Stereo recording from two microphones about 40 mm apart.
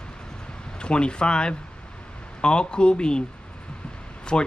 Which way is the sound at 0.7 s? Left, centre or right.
Left.